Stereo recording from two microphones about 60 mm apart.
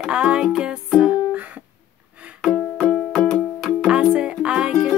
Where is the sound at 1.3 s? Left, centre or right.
Right.